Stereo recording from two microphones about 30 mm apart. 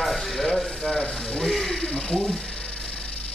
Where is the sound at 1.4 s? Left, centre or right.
Centre.